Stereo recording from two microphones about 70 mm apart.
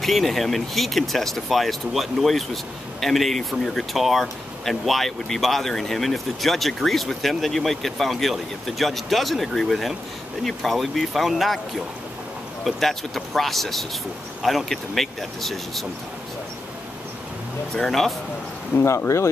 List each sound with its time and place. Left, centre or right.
0.0 s speech: centre
17.7 s speech: centre
18.7 s speech: left